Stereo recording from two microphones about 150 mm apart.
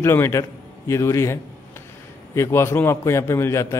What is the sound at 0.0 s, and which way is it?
A man's voice, 15° left (ahead or behind).